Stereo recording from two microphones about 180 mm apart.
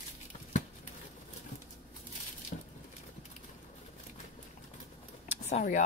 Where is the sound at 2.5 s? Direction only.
50° left (ahead or behind).